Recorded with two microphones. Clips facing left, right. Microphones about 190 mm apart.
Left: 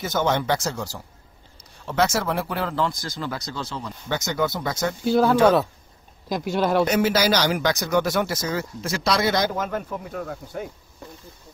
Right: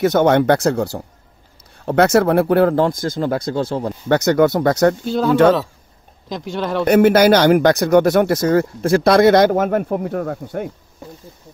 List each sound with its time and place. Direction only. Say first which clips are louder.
0.0 s speech: right 10 dB; 60° right (ahead or behind)
5.0 s speech: even; 5° left (ahead or behind)
6.8 s speech: right 13 dB; 60° right (ahead or behind)